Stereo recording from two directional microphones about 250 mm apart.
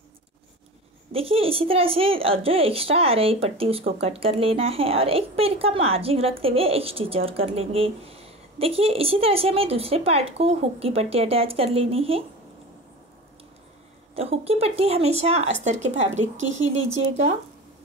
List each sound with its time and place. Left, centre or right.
1.1 s a woman's voice: right
14.1 s a woman's voice: right